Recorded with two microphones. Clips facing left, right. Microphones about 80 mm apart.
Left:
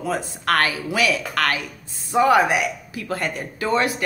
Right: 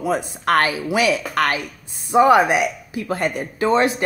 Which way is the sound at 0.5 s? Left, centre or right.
Right.